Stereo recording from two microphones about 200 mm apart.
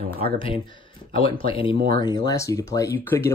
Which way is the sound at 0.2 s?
25° left (ahead or behind).